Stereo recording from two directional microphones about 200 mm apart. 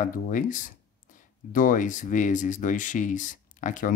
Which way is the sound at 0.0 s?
40° left (ahead or behind).